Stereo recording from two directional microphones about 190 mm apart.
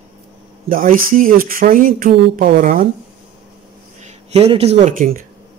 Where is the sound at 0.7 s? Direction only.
45° right (ahead or behind).